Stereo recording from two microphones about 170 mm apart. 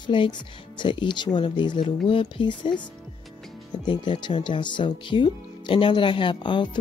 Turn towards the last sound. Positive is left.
turn(degrees=30)  # may be behind; listen again after turning